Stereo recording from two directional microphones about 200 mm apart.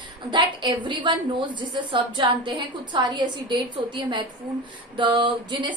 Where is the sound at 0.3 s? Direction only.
20° right (ahead or behind).